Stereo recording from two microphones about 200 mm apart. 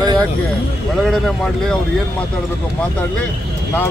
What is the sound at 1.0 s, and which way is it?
Speech, centre (ahead or behind).